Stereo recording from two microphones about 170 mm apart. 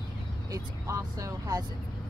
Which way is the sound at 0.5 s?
20° right (ahead or behind).